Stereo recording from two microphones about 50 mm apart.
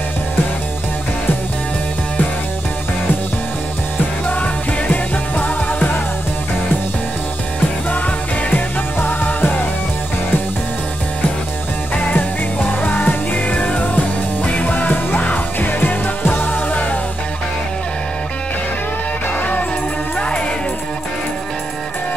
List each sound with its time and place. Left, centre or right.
4.3 s music: left
8.5 s music: left
12.0 s music: left
20.2 s music: centre